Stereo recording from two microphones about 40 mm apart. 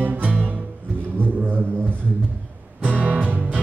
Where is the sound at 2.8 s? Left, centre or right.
Right.